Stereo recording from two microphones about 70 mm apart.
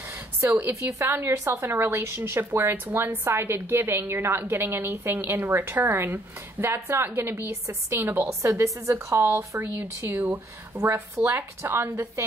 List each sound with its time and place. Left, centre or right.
0.4 s a woman's voice: right
8.3 s a woman's voice: right